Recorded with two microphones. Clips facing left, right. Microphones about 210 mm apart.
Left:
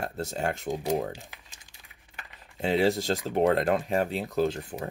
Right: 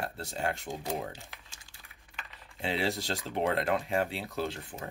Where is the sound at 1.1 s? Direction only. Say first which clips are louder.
Left 6 dB; 15° left (ahead or behind).